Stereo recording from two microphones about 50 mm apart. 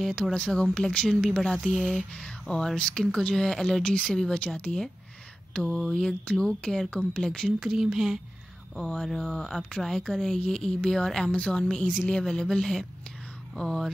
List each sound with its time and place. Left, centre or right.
0.1 s speech: centre
1.2 s speech: centre
2.1 s speech: centre
5.7 s speech: centre
7.6 s speech: centre
8.8 s speech: centre
11.3 s speech: centre